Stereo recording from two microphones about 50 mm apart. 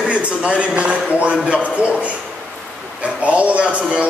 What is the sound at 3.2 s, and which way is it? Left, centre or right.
Speech, right.